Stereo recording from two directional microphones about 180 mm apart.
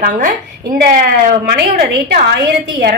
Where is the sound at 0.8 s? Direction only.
60° right (ahead or behind).